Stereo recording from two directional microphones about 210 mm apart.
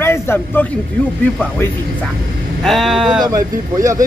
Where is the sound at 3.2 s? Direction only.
15° right (ahead or behind).